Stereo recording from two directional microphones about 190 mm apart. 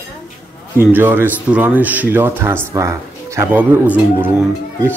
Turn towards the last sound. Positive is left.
turn(degrees=-10)  # may be behind; listen again after turning